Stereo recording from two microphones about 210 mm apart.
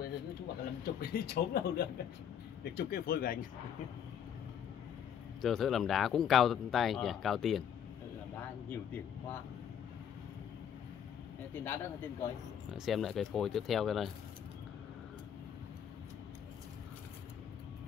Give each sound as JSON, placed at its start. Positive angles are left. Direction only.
{"t": 0.8, "sound": "speech", "side_deg": 45}
{"t": 5.4, "sound": "speech", "side_deg": 0}
{"t": 11.5, "sound": "speech", "side_deg": 10}
{"t": 12.7, "sound": "speech", "side_deg": 0}